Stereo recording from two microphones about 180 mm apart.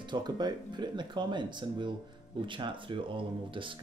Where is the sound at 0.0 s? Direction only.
25° right (ahead or behind).